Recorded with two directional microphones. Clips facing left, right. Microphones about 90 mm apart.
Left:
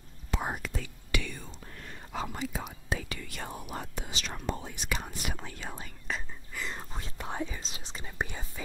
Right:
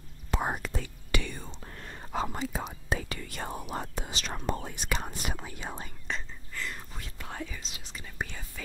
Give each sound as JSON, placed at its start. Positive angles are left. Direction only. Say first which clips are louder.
{"t": 0.3, "sound": "whispering", "louder": "right 3 dB", "side_deg": -40}
{"t": 5.4, "sound": "speech", "louder": "right 1 dB", "side_deg": -10}
{"t": 6.0, "sound": "whispering", "louder": "left 1 dB", "side_deg": 5}
{"t": 6.6, "sound": "whispering", "louder": "left 1 dB", "side_deg": 30}